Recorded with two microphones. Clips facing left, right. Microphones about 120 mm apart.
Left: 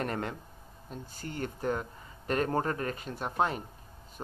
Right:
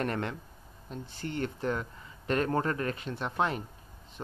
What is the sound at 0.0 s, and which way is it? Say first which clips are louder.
Speech: right 1 dB; 35° left (ahead or behind).